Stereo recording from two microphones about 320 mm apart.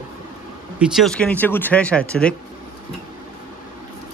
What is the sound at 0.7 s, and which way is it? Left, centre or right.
Speech, centre.